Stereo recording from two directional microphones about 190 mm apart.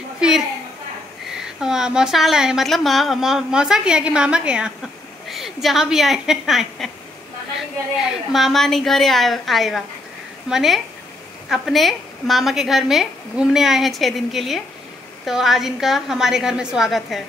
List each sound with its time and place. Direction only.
1.3 s a woman's voice: 5° right (ahead or behind)
8.3 s a woman's voice: centre (ahead or behind)